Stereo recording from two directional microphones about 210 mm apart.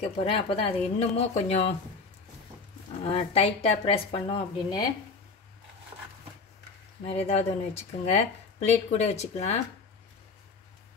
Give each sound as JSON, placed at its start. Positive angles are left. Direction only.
{"t": 0.0, "sound": "speech", "side_deg": 25}
{"t": 3.0, "sound": "speech", "side_deg": 25}
{"t": 7.2, "sound": "speech", "side_deg": 30}